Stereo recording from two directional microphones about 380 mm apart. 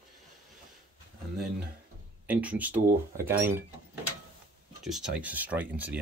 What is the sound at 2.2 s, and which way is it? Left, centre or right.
Speech, centre.